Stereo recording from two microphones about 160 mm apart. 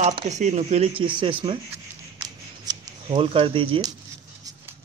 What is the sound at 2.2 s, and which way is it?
Scissors, 25° right (ahead or behind).